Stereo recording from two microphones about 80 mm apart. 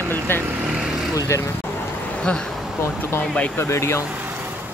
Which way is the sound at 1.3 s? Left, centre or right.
Left.